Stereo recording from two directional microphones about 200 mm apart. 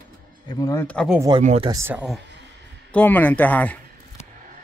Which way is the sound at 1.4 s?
35° right (ahead or behind).